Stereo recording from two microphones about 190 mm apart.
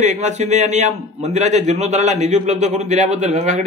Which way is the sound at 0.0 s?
40° right (ahead or behind).